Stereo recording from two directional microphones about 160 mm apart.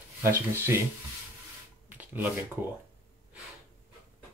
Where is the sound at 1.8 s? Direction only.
10° right (ahead or behind).